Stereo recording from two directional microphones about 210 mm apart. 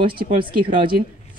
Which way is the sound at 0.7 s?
45° right (ahead or behind).